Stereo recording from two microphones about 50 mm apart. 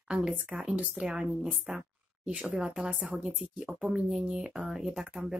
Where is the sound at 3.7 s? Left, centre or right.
Centre.